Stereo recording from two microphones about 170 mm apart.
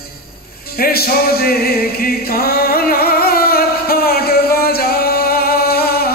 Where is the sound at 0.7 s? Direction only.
65° left (ahead or behind).